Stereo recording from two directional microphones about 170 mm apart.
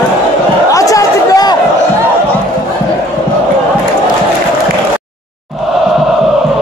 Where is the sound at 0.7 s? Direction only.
20° left (ahead or behind).